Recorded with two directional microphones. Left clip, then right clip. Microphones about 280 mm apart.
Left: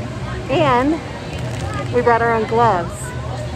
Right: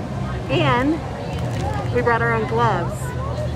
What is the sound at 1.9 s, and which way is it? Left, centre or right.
Speech, centre.